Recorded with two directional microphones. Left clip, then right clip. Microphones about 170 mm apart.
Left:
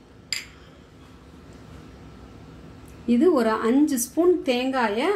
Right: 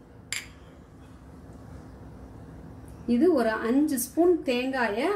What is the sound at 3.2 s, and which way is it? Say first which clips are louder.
Speech: left 3 dB; 50° left (ahead or behind).